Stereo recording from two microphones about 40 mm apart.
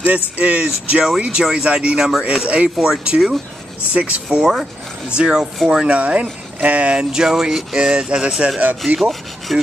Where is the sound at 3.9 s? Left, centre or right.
Right.